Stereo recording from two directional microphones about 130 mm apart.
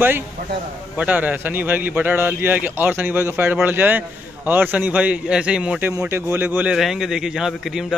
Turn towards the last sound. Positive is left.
turn(degrees=-5)  # may be behind; listen again after turning